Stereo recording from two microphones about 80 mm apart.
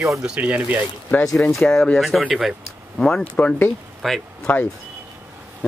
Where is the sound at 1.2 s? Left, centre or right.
Centre.